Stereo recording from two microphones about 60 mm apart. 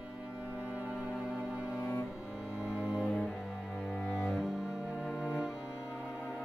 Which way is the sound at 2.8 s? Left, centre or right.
Centre.